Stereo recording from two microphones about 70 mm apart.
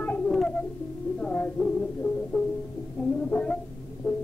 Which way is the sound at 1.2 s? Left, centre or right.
Centre.